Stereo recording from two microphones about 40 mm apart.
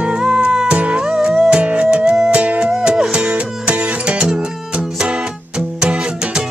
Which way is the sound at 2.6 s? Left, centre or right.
Centre.